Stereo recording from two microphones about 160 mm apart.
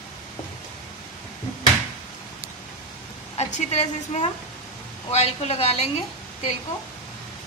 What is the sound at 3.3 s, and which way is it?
A woman's voice, 45° left (ahead or behind).